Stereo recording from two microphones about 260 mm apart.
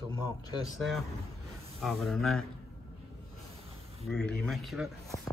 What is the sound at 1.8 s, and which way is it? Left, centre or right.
Speech, centre.